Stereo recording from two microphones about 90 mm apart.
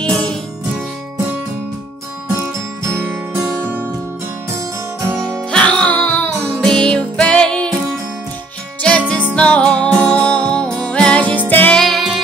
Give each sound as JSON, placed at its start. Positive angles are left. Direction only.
{"t": 0.0, "sound": "music", "side_deg": 10}
{"t": 3.0, "sound": "music", "side_deg": -20}
{"t": 5.5, "sound": "music", "side_deg": 10}
{"t": 6.6, "sound": "music", "side_deg": 10}
{"t": 9.1, "sound": "music", "side_deg": 10}
{"t": 11.8, "sound": "music", "side_deg": 0}